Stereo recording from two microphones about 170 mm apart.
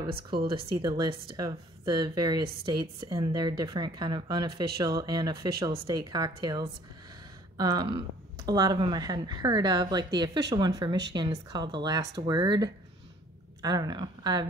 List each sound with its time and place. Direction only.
0.1 s a woman's voice: 65° right (ahead or behind)
0.6 s a woman's voice: 25° right (ahead or behind)